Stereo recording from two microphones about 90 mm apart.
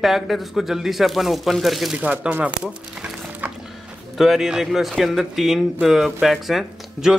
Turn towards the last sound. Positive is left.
turn(degrees=-5)  # may be behind; listen again after turning